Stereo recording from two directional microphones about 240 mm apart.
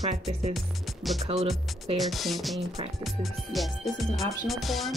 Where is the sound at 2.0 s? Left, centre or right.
Centre.